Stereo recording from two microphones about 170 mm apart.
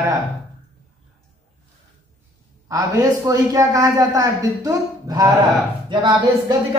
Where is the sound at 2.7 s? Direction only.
20° right (ahead or behind).